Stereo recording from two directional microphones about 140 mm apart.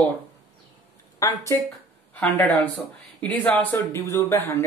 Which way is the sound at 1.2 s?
20° left (ahead or behind).